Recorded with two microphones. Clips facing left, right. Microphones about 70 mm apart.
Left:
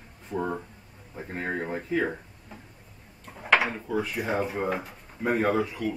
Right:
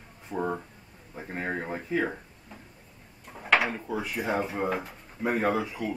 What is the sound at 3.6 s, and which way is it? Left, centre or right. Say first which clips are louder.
Speech: left 2 dB; centre.